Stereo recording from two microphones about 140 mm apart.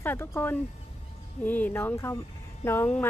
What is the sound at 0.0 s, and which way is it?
Speech, 15° left (ahead or behind).